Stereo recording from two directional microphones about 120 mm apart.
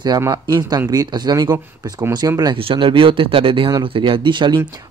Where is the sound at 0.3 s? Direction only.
35° right (ahead or behind).